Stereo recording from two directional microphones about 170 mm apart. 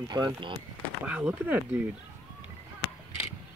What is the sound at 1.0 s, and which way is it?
Speech, 10° right (ahead or behind).